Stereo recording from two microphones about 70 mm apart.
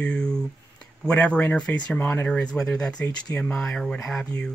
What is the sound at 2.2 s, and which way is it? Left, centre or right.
Speech, centre.